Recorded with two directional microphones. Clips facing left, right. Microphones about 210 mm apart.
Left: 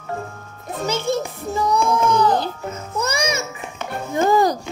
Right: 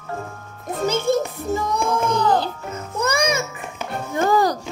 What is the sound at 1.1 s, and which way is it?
Music, 50° right (ahead or behind).